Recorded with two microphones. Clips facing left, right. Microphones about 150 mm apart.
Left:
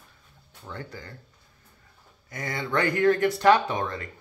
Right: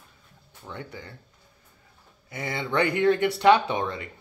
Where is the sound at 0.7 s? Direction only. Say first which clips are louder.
Even; 20° right (ahead or behind).